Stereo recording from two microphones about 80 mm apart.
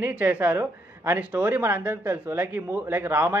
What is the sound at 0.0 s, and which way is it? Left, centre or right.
A woman's voice, right.